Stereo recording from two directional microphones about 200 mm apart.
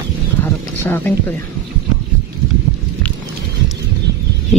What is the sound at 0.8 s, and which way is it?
Speech, 10° left (ahead or behind).